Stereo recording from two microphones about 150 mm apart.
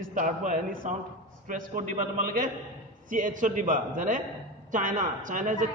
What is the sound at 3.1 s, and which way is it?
A man's voice, 60° right (ahead or behind).